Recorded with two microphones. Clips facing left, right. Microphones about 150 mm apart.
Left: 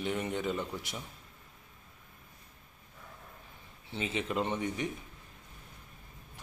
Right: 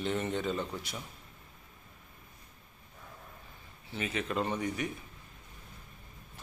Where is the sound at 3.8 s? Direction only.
25° left (ahead or behind).